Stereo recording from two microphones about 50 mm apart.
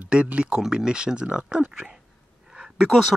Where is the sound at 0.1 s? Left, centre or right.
Right.